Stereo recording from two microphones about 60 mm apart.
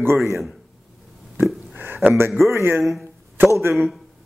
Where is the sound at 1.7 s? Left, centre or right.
Right.